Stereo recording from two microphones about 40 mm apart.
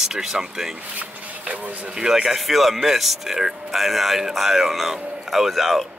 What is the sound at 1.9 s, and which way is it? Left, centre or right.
Speech, centre.